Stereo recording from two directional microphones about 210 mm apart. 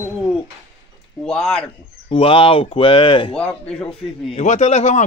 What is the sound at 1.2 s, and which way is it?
Speech, 5° left (ahead or behind).